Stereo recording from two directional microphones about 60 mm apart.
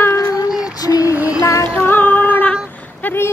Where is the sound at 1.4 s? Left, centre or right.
Left.